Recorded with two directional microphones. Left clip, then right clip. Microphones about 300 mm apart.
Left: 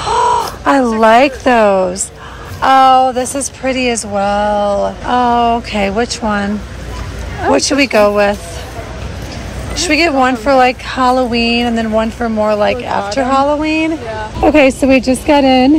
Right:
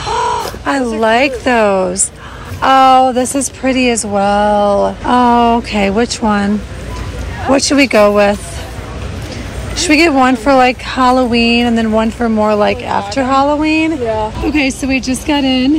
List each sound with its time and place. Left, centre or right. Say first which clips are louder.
0.0 s speech: left 3 dB; centre
7.5 s speech: right 2 dB; centre
9.8 s speech: right 2 dB; centre
14.9 s speech: left 5 dB; right